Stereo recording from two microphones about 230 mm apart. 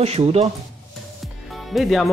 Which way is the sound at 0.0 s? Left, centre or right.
Right.